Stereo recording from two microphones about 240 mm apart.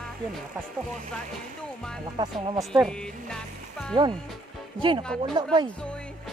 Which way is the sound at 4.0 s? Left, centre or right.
Centre.